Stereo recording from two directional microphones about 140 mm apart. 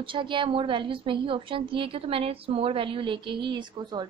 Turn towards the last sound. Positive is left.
turn(degrees=-30)  # may be behind; listen again after turning